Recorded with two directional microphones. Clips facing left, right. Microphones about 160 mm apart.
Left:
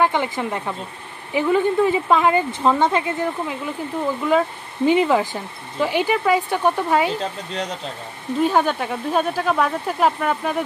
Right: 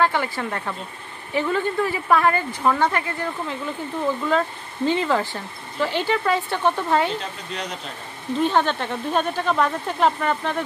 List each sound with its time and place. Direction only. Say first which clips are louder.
0.0 s speech: left 2 dB; 15° left (ahead or behind)
8.4 s speech: left 2 dB; 10° left (ahead or behind)